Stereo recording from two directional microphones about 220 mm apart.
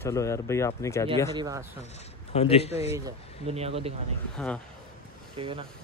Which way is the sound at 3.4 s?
25° right (ahead or behind).